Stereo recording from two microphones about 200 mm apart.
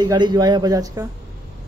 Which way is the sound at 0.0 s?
20° right (ahead or behind).